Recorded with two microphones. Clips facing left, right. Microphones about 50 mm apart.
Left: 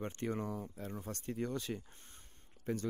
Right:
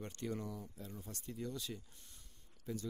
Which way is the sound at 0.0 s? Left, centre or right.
Left.